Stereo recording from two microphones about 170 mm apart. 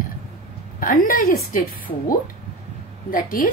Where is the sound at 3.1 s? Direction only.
55° left (ahead or behind).